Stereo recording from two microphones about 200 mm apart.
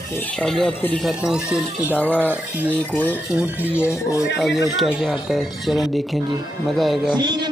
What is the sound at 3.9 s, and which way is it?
Cutlery, 15° left (ahead or behind).